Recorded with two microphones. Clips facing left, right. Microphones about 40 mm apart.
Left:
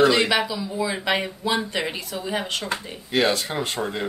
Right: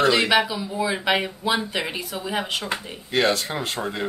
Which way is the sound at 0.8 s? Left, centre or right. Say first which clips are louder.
Right 2 dB; centre.